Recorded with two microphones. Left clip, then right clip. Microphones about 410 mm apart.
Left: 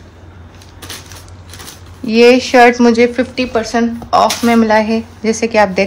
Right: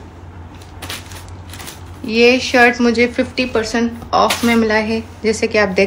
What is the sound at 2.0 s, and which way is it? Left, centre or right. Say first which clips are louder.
Speech: left 4 dB; left.